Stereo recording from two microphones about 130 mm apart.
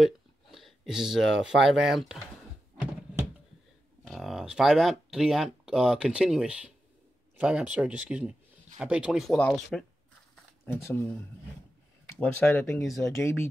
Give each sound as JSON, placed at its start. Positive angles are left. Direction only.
{"t": 0.0, "sound": "speech", "side_deg": 0}
{"t": 4.1, "sound": "speech", "side_deg": -5}
{"t": 9.3, "sound": "speech", "side_deg": 5}
{"t": 10.6, "sound": "speech", "side_deg": 15}
{"t": 12.2, "sound": "speech", "side_deg": 15}